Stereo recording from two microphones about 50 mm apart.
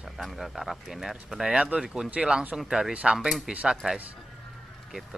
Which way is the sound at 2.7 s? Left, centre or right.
Centre.